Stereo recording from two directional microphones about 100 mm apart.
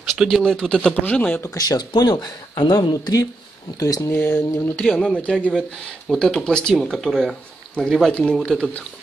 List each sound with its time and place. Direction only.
0.1 s speech: centre (ahead or behind)
1.4 s speech: 35° left (ahead or behind)
4.7 s speech: 10° left (ahead or behind)